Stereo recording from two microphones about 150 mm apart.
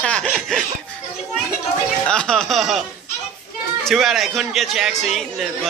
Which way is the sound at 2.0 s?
5° left (ahead or behind).